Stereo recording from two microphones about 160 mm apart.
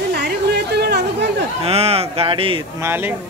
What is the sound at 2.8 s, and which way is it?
Speech, 15° right (ahead or behind).